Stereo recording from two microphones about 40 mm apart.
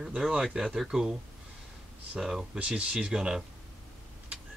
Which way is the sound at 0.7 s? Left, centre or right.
Centre.